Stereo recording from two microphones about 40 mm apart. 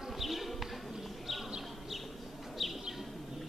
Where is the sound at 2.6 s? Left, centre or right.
Centre.